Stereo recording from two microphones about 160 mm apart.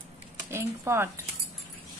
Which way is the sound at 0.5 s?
15° right (ahead or behind).